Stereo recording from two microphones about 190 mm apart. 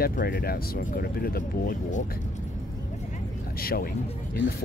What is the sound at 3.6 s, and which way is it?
Speech, 50° left (ahead or behind).